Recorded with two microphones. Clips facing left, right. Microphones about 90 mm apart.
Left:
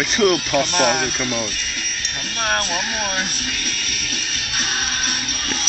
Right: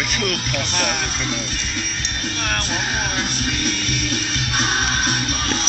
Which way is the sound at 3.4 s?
35° right (ahead or behind).